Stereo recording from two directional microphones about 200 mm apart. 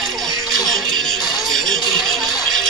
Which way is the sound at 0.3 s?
20° left (ahead or behind).